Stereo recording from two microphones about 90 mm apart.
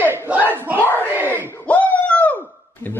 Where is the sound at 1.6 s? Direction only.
15° left (ahead or behind).